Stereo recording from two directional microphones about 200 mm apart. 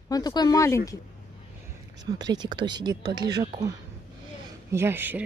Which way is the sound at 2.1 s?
20° right (ahead or behind).